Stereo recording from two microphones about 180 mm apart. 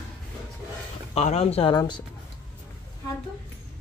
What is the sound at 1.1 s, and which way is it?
Speech, 35° left (ahead or behind).